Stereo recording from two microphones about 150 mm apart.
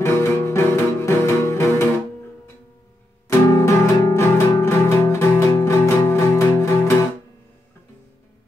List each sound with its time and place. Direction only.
0.0 s music: 15° left (ahead or behind)
3.3 s music: 20° left (ahead or behind)